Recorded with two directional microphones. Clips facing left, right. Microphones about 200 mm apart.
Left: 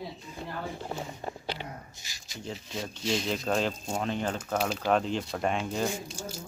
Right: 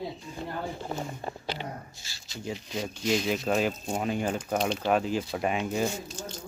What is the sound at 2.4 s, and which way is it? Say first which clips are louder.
Speech: right 3 dB; centre (ahead or behind).